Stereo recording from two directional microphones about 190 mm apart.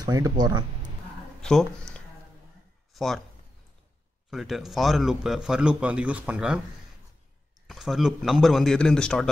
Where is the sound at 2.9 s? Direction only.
Centre (ahead or behind).